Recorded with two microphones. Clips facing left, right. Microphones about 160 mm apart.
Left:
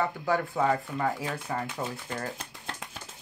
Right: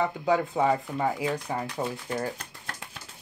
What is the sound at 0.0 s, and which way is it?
Speech, 15° right (ahead or behind).